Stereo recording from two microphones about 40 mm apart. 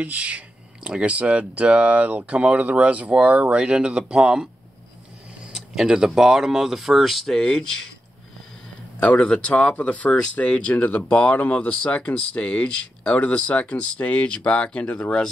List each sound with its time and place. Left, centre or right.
0.0 s speech: right; by 4.5 s centre
5.9 s speech: centre
6.1 s speech: centre
7.4 s speech: centre
9.2 s speech: left